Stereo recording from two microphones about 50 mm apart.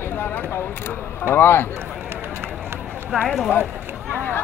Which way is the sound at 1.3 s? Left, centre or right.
Left.